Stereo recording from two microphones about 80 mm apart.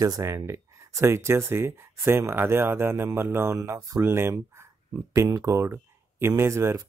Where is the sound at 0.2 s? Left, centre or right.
Right.